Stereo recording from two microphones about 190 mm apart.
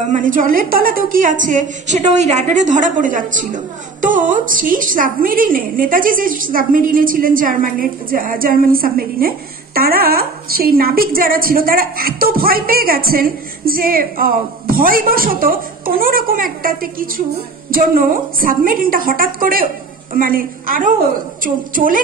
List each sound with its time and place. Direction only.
0.1 s a woman's voice: 45° right (ahead or behind)